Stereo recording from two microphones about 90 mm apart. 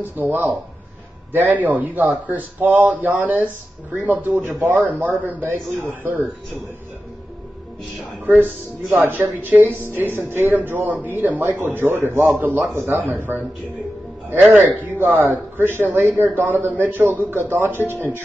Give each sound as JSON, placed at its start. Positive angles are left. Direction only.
{"t": 0.2, "sound": "speech", "side_deg": -20}
{"t": 8.0, "sound": "speech", "side_deg": -15}
{"t": 15.0, "sound": "speech", "side_deg": -20}